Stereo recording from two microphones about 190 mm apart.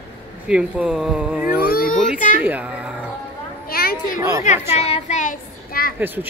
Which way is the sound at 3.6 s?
50° left (ahead or behind).